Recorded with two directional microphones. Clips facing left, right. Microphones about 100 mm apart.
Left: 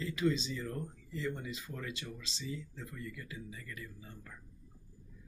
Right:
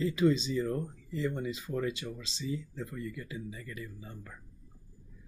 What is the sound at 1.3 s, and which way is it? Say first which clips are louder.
Speech: right 8 dB; 30° right (ahead or behind).